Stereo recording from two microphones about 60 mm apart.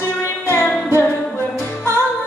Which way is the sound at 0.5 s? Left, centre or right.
Left.